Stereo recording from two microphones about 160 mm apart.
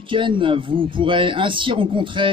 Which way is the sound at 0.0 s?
30° right (ahead or behind).